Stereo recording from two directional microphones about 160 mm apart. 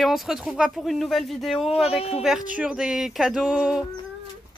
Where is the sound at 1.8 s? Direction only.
40° left (ahead or behind).